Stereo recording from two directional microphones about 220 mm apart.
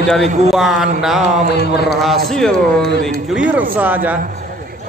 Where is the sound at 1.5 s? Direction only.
50° left (ahead or behind).